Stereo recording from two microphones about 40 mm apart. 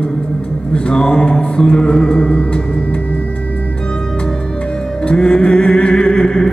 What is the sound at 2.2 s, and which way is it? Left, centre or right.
Music, left.